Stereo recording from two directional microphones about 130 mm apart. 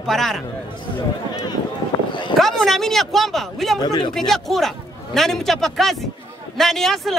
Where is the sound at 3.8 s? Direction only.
35° left (ahead or behind).